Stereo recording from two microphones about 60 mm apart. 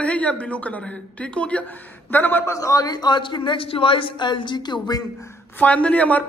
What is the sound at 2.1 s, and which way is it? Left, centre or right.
Speech, left.